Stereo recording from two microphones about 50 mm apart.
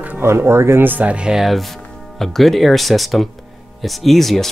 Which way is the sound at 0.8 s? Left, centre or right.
Right.